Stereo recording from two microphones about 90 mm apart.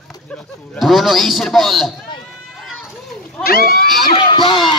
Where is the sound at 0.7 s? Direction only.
Centre (ahead or behind).